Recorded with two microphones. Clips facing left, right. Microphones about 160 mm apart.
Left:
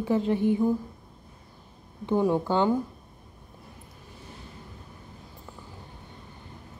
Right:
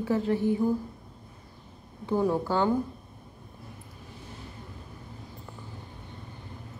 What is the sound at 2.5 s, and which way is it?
Speech, 20° left (ahead or behind).